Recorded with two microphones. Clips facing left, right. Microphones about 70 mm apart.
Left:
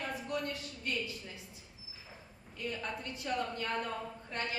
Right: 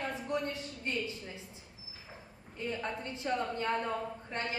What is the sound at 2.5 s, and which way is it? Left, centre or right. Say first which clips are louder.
A woman's voice: right 2 dB; right.